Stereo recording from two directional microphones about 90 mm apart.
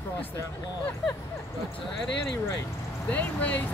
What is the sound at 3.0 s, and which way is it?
Speech, 20° left (ahead or behind).